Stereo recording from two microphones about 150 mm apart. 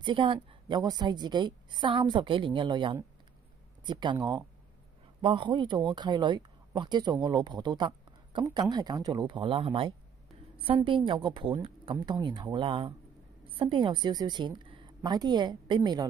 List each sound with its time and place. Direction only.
0.0 s a woman's voice: 35° right (ahead or behind)